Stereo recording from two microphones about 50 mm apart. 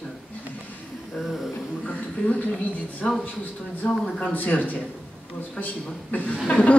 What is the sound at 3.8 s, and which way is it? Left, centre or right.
Speech, centre.